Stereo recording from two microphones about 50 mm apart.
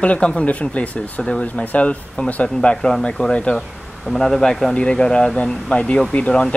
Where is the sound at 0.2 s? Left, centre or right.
Left.